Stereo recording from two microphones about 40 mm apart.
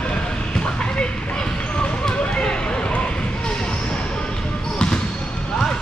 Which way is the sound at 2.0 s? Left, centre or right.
Left.